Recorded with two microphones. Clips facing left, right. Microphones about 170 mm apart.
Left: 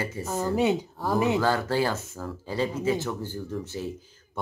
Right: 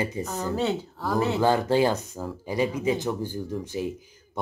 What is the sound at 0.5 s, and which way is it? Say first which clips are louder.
Speech: left 3 dB; 15° left (ahead or behind).